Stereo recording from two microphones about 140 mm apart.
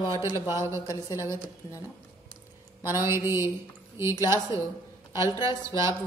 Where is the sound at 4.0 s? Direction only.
20° right (ahead or behind).